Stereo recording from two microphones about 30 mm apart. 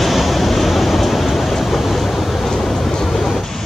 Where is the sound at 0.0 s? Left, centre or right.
Centre.